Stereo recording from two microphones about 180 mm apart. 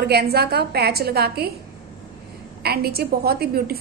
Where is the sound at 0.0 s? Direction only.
65° right (ahead or behind).